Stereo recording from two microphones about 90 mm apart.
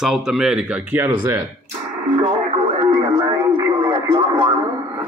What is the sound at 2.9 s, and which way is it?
Radio, 55° right (ahead or behind).